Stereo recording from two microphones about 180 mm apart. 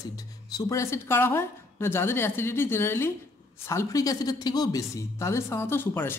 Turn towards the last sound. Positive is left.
turn(degrees=10)  # may be behind; listen again after turning